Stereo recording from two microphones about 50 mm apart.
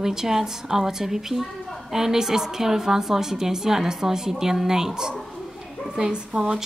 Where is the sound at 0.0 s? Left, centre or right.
Centre.